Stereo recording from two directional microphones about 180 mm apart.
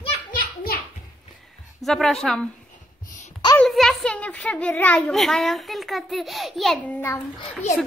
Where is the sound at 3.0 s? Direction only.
45° left (ahead or behind).